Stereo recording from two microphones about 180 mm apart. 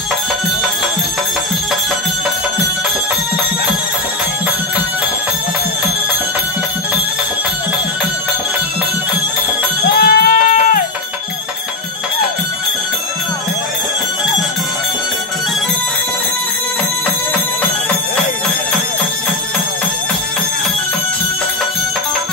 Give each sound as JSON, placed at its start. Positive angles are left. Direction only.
{"t": 9.9, "sound": "sheep", "side_deg": 60}